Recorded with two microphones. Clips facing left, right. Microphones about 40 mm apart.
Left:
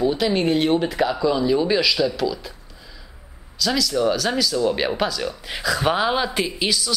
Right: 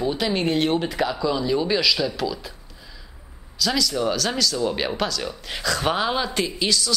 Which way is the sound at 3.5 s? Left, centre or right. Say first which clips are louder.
Left 2 dB; centre.